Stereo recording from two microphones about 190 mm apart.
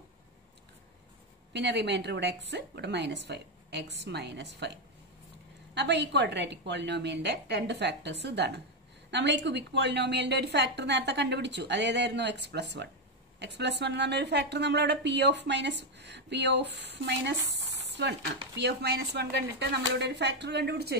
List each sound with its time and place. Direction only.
1.5 s a woman's voice: 65° right (ahead or behind)
5.8 s a woman's voice: 65° right (ahead or behind)